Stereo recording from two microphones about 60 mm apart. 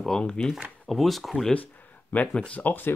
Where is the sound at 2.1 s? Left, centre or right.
Left.